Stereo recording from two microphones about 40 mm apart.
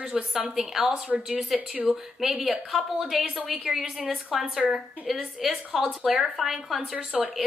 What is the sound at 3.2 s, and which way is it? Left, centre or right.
Speech, right.